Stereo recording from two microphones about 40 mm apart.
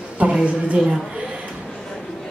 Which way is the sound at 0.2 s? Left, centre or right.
Right.